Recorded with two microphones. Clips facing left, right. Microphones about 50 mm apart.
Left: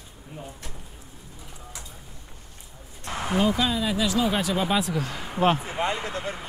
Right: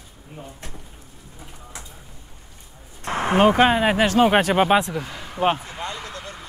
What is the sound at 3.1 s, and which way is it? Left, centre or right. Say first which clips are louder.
Speech: right 7 dB; right.